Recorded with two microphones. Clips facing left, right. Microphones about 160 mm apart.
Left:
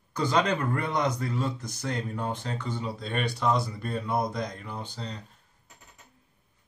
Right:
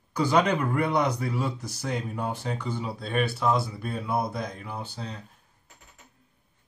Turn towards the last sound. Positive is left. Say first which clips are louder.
# right 1 dB
turn(degrees=-5)  # may be behind; listen again after turning